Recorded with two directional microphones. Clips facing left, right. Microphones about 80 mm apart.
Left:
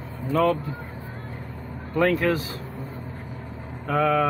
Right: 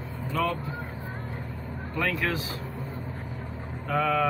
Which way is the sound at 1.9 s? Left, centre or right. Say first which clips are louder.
Left 7 dB; left.